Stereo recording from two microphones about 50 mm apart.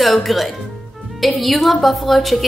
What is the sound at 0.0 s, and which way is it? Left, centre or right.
A woman's voice, centre.